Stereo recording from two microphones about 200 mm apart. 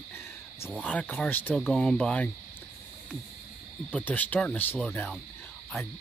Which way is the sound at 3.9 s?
5° left (ahead or behind).